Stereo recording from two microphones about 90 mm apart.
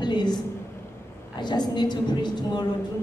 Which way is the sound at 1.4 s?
55° left (ahead or behind).